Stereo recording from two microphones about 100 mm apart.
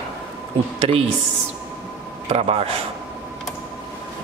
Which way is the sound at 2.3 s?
85° right.